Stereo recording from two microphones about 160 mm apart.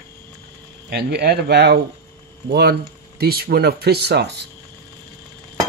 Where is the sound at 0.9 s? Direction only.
90° right.